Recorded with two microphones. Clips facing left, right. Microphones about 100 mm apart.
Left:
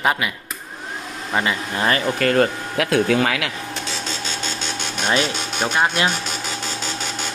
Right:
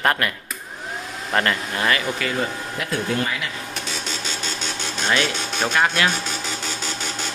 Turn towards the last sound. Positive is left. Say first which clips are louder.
# left 1 dB
turn(degrees=20)  # may be behind; listen again after turning